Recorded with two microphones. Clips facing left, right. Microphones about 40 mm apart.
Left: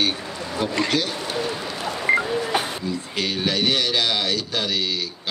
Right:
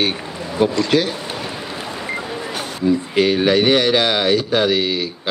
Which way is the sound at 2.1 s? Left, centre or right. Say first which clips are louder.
Left 9 dB; left.